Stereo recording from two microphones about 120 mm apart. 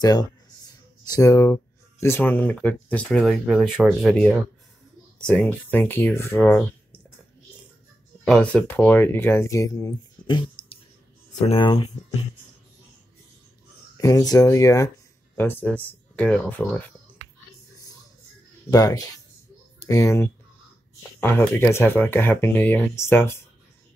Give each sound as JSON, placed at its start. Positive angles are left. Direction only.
{"t": 0.0, "sound": "speech", "side_deg": 35}
{"t": 8.3, "sound": "speech", "side_deg": 5}
{"t": 14.0, "sound": "speech", "side_deg": 30}
{"t": 15.3, "sound": "speech", "side_deg": 15}
{"t": 18.7, "sound": "speech", "side_deg": 30}